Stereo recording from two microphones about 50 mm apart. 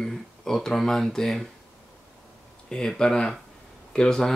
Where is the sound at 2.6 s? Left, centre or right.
Centre.